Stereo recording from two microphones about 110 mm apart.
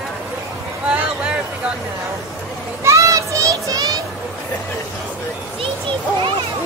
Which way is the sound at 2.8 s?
30° right (ahead or behind).